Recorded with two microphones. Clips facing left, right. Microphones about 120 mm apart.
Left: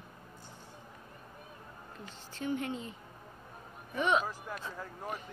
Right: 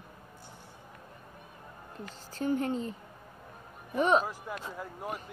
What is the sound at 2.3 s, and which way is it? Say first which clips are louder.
Speech: right 5 dB; 40° right (ahead or behind).